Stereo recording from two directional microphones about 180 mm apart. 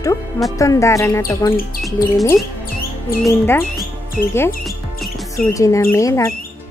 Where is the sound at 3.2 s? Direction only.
15° left (ahead or behind).